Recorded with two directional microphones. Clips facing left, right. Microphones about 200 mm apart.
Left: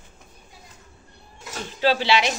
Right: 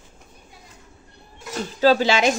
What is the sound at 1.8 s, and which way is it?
Speech, 45° right (ahead or behind).